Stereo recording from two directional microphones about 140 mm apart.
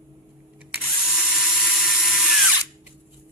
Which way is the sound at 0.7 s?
Centre (ahead or behind).